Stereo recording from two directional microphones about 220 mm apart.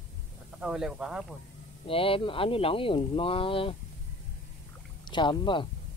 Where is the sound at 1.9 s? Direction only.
25° left (ahead or behind).